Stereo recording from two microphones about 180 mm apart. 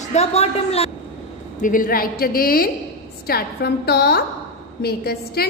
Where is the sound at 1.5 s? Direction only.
50° left (ahead or behind).